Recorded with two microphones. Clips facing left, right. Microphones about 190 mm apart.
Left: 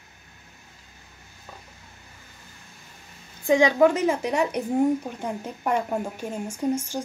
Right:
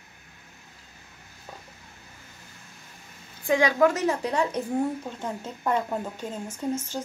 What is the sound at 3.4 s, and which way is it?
Speech, 20° left (ahead or behind).